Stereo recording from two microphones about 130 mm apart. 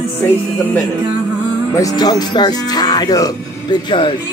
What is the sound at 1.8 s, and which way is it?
Music, 30° left (ahead or behind).